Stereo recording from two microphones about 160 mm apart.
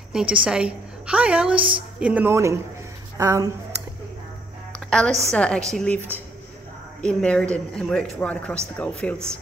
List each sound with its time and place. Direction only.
0.1 s a woman's voice: 5° right (ahead or behind)
4.8 s a sound: 5° left (ahead or behind)
5.3 s a woman's voice: 5° left (ahead or behind)
7.0 s a man's voice: 5° left (ahead or behind)